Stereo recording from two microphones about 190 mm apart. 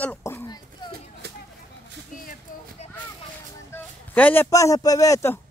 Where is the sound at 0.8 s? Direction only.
25° left (ahead or behind).